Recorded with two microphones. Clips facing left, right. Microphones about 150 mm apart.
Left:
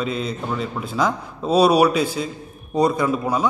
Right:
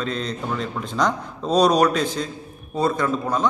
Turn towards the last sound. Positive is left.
turn(degrees=10)  # may be behind; listen again after turning